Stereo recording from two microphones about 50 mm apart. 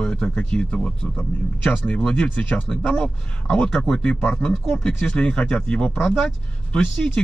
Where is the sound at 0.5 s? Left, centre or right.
Left.